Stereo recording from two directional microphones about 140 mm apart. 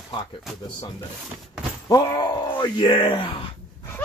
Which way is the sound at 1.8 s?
30° left (ahead or behind).